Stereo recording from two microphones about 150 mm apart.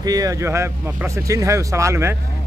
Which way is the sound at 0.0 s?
25° right (ahead or behind).